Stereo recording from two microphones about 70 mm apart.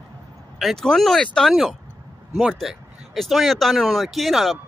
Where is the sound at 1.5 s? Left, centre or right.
Centre.